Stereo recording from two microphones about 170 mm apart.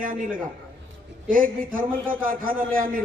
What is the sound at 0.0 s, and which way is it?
A man's voice, 55° right (ahead or behind).